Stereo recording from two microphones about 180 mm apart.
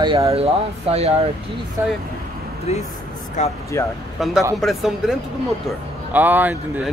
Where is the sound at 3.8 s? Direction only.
15° left (ahead or behind).